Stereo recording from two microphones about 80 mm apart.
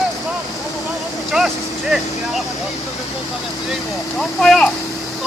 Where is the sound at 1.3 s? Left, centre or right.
Centre.